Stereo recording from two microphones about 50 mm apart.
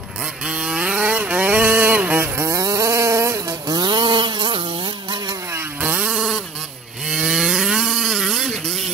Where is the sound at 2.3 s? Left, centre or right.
Right.